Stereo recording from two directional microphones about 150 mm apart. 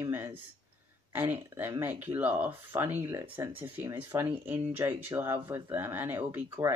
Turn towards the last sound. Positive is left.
turn(degrees=-15)  # may be behind; listen again after turning